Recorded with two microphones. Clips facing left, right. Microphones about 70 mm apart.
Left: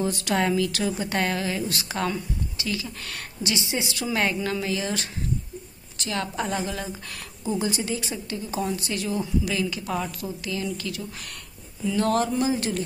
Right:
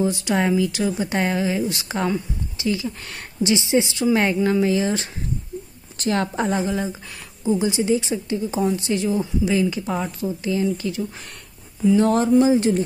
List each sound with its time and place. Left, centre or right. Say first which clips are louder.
0.0 s a woman's voice: right 4 dB; centre